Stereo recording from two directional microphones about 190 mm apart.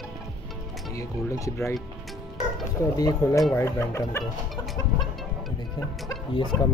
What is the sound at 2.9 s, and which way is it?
Speech, 20° left (ahead or behind).